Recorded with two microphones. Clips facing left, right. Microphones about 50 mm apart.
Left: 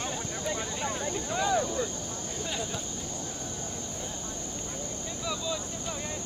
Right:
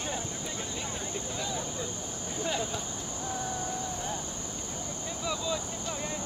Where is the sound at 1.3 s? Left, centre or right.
Left.